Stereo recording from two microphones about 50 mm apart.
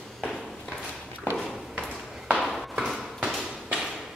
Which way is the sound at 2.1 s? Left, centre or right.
Centre.